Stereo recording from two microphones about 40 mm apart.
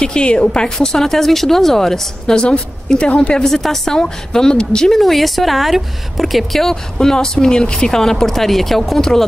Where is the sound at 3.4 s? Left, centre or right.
Centre.